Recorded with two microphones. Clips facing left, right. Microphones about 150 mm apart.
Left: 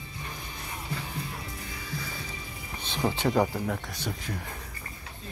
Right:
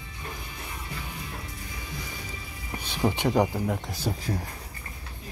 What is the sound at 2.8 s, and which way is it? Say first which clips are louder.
Speech: right 2 dB; 10° right (ahead or behind).